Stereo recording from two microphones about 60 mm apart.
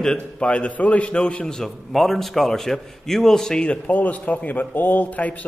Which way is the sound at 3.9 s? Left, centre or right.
Left.